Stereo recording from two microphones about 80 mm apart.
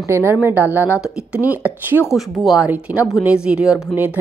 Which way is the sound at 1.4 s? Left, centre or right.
Right.